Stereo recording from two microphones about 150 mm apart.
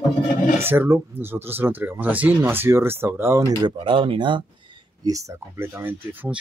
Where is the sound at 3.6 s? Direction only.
35° right (ahead or behind); by 6.3 s 10° right (ahead or behind).